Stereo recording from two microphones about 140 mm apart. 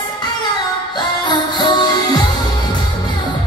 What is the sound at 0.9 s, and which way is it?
Music, 30° left (ahead or behind).